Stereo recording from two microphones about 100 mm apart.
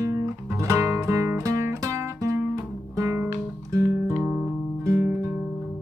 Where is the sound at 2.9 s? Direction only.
30° right (ahead or behind).